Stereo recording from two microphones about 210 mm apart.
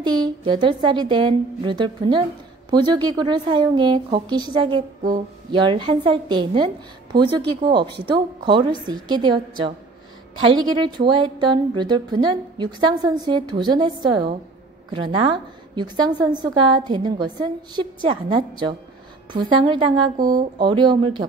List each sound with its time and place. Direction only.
0.0 s a woman's voice: 20° right (ahead or behind)
10.4 s a woman's voice: 20° right (ahead or behind)